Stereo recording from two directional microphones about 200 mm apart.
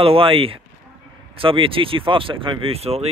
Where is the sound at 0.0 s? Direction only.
30° right (ahead or behind).